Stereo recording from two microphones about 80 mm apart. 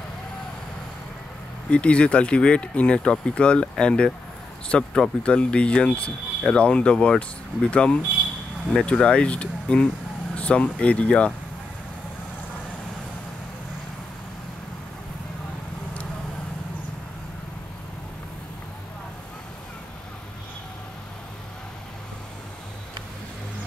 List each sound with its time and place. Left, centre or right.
1.7 s speech: centre